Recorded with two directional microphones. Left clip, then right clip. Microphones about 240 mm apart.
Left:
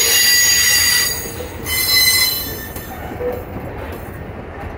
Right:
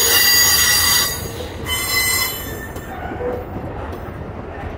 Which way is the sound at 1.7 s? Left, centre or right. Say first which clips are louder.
Left 5 dB; left.